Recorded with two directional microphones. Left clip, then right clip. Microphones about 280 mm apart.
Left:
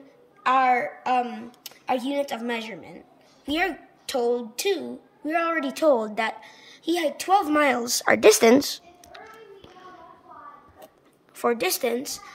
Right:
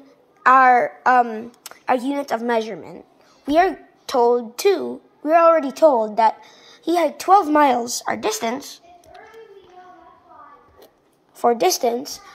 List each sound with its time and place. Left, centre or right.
0.4 s a woman's voice: centre
5.9 s a woman's voice: centre
6.2 s a woman's voice: centre
7.8 s speech: centre
11.3 s a woman's voice: centre